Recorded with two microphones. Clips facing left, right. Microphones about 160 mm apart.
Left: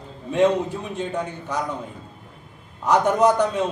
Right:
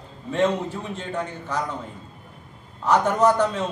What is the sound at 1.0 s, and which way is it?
Speech, 15° left (ahead or behind).